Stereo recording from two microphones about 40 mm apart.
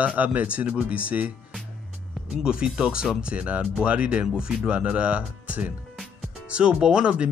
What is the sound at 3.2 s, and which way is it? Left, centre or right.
Speech, right.